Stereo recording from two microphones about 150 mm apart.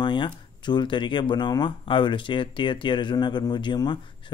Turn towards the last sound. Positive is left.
turn(degrees=30)  # may be behind; listen again after turning